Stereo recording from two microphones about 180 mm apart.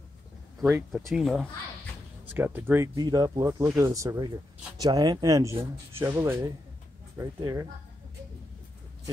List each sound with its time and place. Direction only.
0.6 s speech: 5° right (ahead or behind)
2.3 s speech: 10° right (ahead or behind)